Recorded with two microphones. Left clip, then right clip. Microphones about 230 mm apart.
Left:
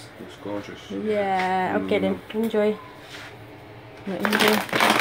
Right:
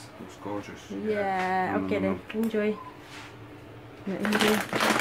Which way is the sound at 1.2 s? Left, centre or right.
Centre.